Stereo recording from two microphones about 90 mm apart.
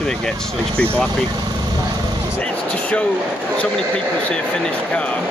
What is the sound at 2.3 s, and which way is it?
Music, 15° left (ahead or behind).